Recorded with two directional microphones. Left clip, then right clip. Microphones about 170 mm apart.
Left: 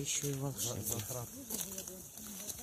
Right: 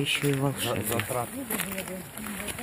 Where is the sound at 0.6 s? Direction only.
50° left (ahead or behind).